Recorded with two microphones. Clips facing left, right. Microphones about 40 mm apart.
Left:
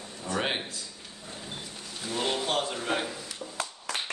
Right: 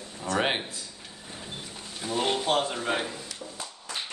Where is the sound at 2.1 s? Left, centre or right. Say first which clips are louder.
Right 3 dB; centre.